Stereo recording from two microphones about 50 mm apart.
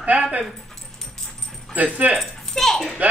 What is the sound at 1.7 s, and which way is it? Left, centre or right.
Speech, right.